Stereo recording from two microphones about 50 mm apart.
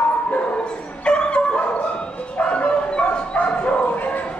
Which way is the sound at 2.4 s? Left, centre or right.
Left.